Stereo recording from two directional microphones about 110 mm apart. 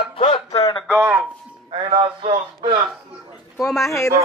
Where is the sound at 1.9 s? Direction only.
50° right (ahead or behind).